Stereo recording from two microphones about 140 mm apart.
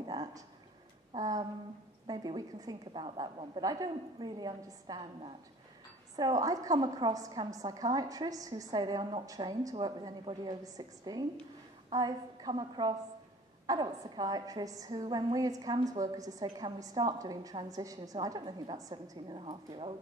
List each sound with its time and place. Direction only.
0.0 s a sound: 30° right (ahead or behind)
2.0 s a woman's voice: 30° right (ahead or behind)
6.1 s a woman's voice: 30° right (ahead or behind)